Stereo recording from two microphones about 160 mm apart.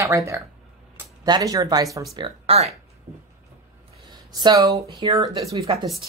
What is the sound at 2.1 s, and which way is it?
Speech, 35° right (ahead or behind).